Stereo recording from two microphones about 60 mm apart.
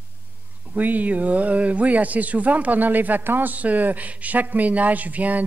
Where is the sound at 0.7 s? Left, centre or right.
Right.